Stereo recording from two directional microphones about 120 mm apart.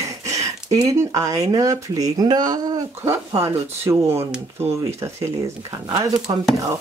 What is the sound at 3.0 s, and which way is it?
Speech, 25° right (ahead or behind).